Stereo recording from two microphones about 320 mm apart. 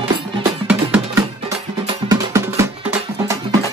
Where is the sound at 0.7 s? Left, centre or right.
Centre.